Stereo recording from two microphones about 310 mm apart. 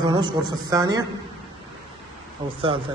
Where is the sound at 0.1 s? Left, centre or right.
Centre.